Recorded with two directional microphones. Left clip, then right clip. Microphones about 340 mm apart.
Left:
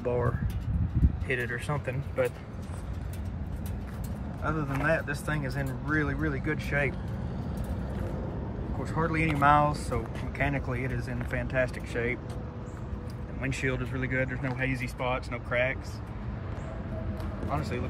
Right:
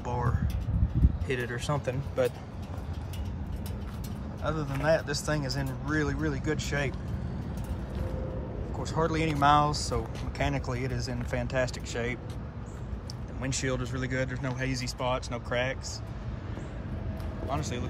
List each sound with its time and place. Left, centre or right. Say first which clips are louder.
1.2 s speech: left 2 dB; centre
4.5 s speech: right 1 dB; centre
8.8 s speech: even; centre
13.4 s speech: left 1 dB; centre
17.5 s speech: left 1 dB; centre